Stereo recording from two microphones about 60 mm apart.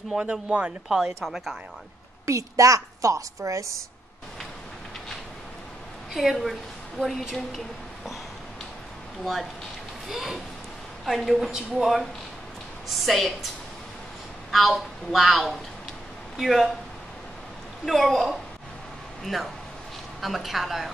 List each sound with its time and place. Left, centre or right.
0.2 s speech: centre
0.8 s a woman's voice: centre
2.2 s a woman's voice: right
6.1 s a woman's voice: centre
9.2 s a woman's voice: centre
14.5 s a woman's voice: centre
17.8 s a woman's voice: centre
20.2 s a woman's voice: centre